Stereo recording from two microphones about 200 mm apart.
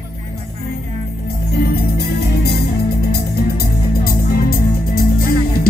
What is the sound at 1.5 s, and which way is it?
Music, 50° left (ahead or behind).